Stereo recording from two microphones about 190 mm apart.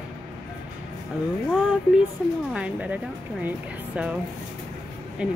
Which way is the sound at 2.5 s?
5° right (ahead or behind).